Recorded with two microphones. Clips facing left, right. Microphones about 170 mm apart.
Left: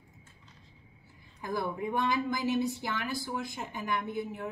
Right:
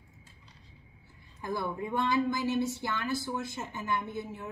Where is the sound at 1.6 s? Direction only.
15° left (ahead or behind).